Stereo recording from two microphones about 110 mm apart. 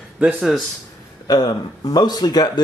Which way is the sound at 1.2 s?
40° left (ahead or behind).